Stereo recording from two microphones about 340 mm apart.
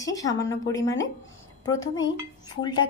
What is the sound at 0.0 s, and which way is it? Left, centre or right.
Speech, centre.